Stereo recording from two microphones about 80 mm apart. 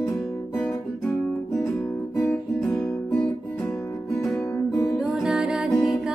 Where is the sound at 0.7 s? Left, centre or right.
Centre.